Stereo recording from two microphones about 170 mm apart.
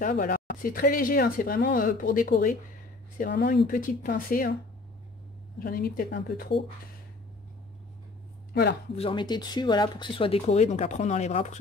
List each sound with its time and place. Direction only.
0.0 s speech: 50° left (ahead or behind)
5.6 s speech: 60° left (ahead or behind)
8.9 s speech: 30° left (ahead or behind)